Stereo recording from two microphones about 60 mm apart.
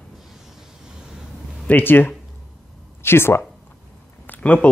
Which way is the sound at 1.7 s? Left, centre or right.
Left.